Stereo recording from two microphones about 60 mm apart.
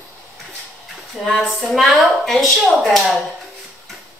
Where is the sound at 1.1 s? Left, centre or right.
Centre.